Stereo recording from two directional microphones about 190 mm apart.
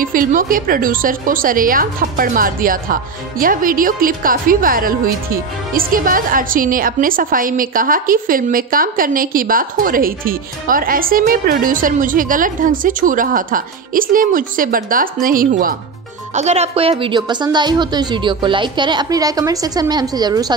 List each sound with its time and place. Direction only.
0.0 s a woman's voice: 45° right (ahead or behind)
16.3 s speech: 35° right (ahead or behind)